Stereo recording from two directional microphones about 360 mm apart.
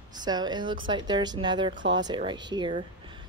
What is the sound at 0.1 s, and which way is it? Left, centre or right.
Speech, centre.